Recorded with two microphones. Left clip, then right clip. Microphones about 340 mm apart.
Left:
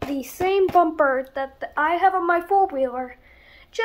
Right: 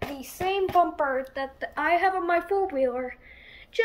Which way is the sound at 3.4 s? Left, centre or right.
Centre.